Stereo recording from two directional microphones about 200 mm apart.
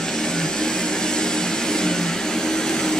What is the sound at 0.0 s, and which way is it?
Vehicle, 5° left (ahead or behind).